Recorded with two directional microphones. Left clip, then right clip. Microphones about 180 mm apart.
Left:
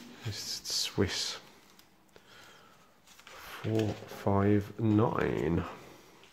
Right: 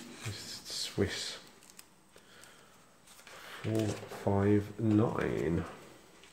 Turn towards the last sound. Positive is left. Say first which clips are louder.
# left 2 dB
turn(degrees=30)  # may be behind; listen again after turning